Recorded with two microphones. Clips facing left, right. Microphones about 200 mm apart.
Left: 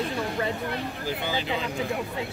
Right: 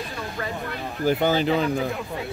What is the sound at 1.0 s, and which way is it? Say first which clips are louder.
Speech: right 13 dB; 50° right (ahead or behind).